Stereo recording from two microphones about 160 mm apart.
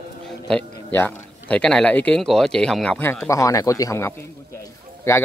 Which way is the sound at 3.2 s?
20° left (ahead or behind).